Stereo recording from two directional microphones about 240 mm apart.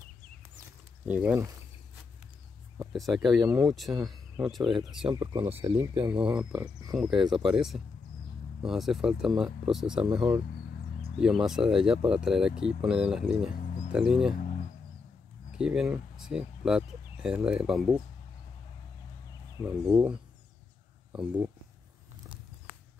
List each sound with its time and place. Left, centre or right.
1.0 s speech: centre
2.8 s speech: centre
5.3 s speech: right
6.2 s speech: centre
11.1 s speech: centre
15.5 s speech: centre
19.6 s speech: centre